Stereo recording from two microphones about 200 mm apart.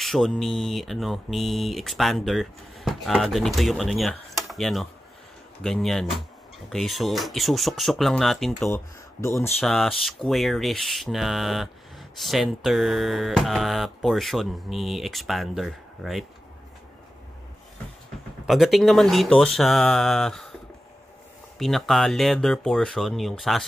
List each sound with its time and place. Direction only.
0.0 s speech: centre (ahead or behind)
8.6 s speech: 15° left (ahead or behind)
9.6 s speech: centre (ahead or behind)
18.5 s speech: centre (ahead or behind)
21.5 s speech: centre (ahead or behind)